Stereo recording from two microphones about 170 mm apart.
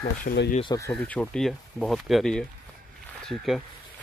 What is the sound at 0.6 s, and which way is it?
Speech, 20° left (ahead or behind).